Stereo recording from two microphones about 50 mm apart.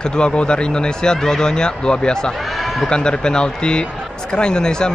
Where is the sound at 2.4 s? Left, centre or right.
Centre.